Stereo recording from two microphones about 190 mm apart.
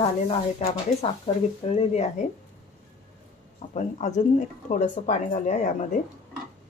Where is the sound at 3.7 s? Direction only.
40° left (ahead or behind).